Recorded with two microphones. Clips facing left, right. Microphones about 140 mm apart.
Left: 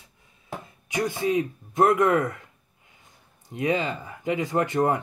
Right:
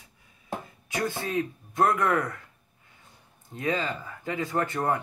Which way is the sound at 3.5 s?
20° left (ahead or behind).